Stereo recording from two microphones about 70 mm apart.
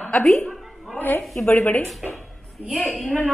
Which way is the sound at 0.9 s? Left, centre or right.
Left.